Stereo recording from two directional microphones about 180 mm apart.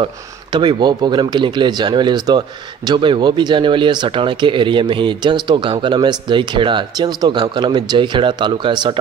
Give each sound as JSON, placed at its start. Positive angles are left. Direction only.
{"t": 0.0, "sound": "speech", "side_deg": -25}